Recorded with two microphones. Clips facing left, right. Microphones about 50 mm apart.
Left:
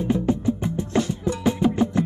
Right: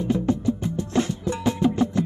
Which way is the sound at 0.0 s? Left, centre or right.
Centre.